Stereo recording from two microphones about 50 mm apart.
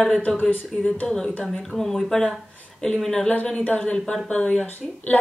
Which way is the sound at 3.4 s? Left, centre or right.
Left.